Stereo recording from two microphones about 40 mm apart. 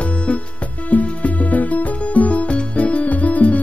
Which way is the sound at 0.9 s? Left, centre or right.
Left.